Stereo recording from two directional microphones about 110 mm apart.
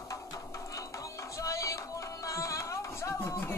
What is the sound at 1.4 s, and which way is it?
Music, 30° left (ahead or behind).